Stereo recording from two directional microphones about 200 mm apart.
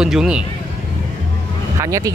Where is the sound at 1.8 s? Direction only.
15° right (ahead or behind).